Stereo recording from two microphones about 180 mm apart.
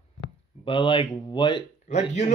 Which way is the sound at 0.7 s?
25° left (ahead or behind).